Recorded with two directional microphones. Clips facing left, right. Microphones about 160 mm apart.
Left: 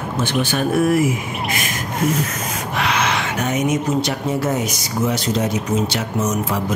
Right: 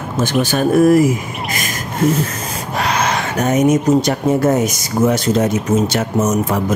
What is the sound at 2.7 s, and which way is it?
Speech, 40° right (ahead or behind).